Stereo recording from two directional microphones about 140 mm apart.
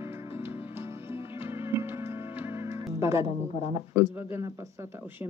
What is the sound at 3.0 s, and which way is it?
Speech, 20° right (ahead or behind).